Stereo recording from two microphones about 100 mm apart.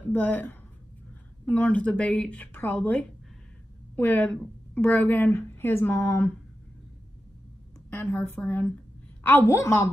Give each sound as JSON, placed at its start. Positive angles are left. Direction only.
{"t": 0.1, "sound": "speech", "side_deg": 20}
{"t": 7.9, "sound": "speech", "side_deg": 20}
{"t": 9.5, "sound": "speech", "side_deg": 30}